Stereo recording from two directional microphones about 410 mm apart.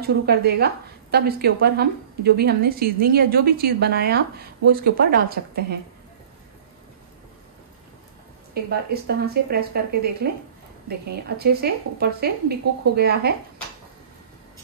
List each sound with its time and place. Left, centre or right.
0.0 s a woman's voice: right
8.5 s a woman's voice: right